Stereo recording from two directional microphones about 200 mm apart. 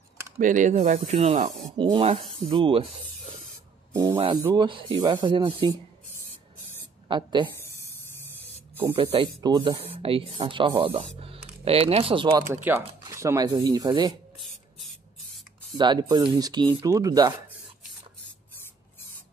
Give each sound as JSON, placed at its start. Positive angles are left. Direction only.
{"t": 0.4, "sound": "speech", "side_deg": -40}
{"t": 3.9, "sound": "speech", "side_deg": -15}
{"t": 7.1, "sound": "speech", "side_deg": -25}
{"t": 7.6, "sound": "a sound", "side_deg": 10}
{"t": 8.9, "sound": "speech", "side_deg": -25}
{"t": 15.8, "sound": "speech", "side_deg": -20}